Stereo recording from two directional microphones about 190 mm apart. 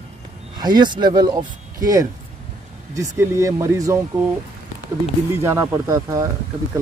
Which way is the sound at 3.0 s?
15° right (ahead or behind).